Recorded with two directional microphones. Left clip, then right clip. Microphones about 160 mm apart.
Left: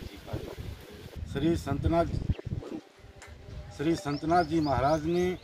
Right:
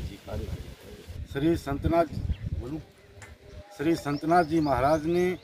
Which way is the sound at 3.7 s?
Centre (ahead or behind).